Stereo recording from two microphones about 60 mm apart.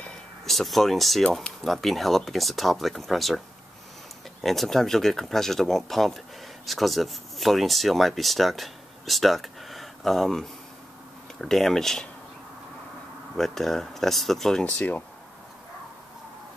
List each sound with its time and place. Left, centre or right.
0.5 s speech: centre
13.4 s speech: centre
14.6 s speech: left